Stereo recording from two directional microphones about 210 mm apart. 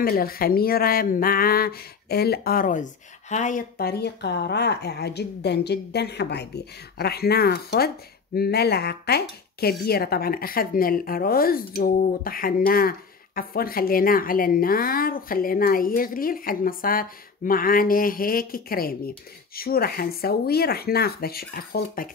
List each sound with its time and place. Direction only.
0.0 s speech: 45° left (ahead or behind)